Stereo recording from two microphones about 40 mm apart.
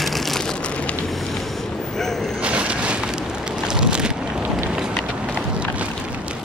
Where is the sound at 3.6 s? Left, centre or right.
Right.